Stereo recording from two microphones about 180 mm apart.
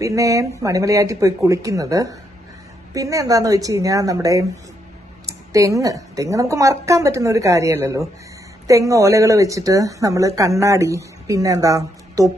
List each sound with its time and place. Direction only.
0.0 s speech: 15° right (ahead or behind)
5.5 s speech: 20° right (ahead or behind)